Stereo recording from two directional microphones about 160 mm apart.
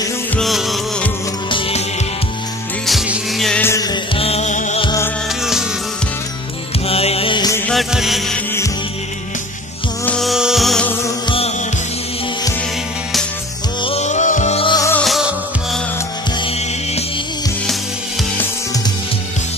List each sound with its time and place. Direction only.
0.4 s music: centre (ahead or behind)
2.9 s music: centre (ahead or behind)
3.6 s music: 20° left (ahead or behind); by 4.8 s 50° left (ahead or behind)
5.4 s music: 5° right (ahead or behind)
6.9 s music: 40° left (ahead or behind)
7.7 s music: centre (ahead or behind)
10.0 s music: centre (ahead or behind)
11.2 s music: 35° left (ahead or behind)
13.7 s music: 40° left (ahead or behind)
14.6 s music: 30° left (ahead or behind)
15.0 s music: centre (ahead or behind)
16.3 s music: 35° left (ahead or behind)